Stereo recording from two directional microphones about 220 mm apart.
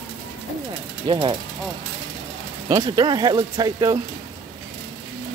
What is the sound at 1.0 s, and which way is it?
Speech, 20° right (ahead or behind).